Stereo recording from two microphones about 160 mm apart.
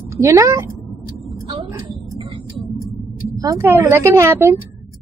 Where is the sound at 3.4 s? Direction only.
20° right (ahead or behind).